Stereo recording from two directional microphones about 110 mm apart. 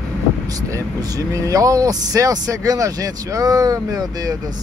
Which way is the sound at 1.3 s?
30° right (ahead or behind).